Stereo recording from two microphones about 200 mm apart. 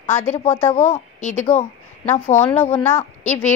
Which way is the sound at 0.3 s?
35° left (ahead or behind).